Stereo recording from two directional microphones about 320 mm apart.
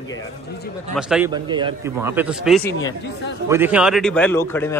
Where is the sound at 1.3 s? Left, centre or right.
Centre.